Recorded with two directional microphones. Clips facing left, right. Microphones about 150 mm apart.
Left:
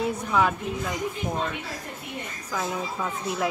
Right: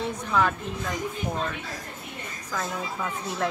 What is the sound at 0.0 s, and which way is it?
Speech, 10° left (ahead or behind).